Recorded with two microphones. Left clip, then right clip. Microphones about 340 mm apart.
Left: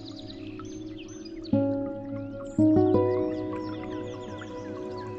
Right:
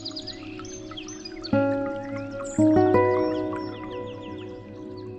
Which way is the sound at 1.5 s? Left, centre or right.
Right.